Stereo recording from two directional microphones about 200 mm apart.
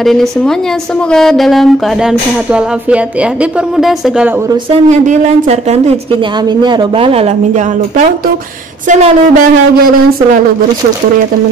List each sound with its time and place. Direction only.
0.0 s speech: centre (ahead or behind)
4.8 s speech: 35° right (ahead or behind)
6.6 s speech: 20° right (ahead or behind)
8.8 s speech: 35° right (ahead or behind)